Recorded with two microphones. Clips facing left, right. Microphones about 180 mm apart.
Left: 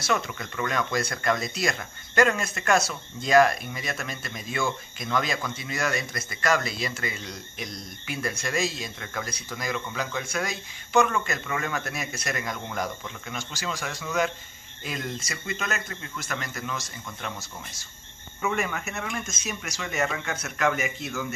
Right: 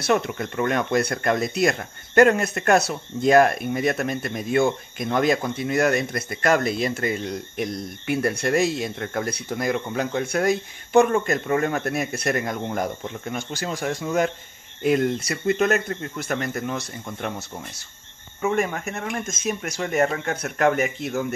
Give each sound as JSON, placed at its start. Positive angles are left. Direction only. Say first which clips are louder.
{"t": 0.0, "sound": "speech", "louder": "right 6 dB", "side_deg": -55}
{"t": 18.4, "sound": "speech", "louder": "right 5 dB", "side_deg": -35}